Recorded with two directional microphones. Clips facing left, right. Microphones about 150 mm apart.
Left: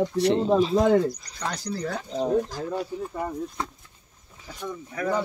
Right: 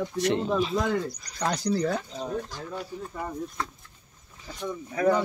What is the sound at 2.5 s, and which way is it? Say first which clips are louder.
Speech: left 6 dB; 30° left (ahead or behind).